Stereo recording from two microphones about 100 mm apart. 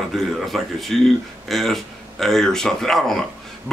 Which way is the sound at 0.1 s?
Centre (ahead or behind).